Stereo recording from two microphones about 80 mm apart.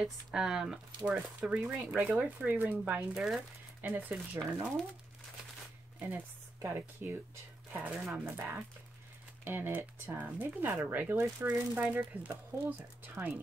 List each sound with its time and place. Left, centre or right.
0.0 s speech: centre
3.2 s speech: centre
3.8 s speech: right
5.9 s speech: right
7.7 s speech: centre
8.3 s speech: right
13.1 s speech: centre